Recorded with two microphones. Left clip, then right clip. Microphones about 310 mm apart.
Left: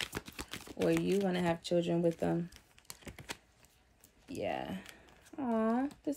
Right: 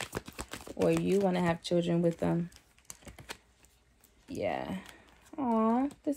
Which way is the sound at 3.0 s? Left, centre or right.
Centre.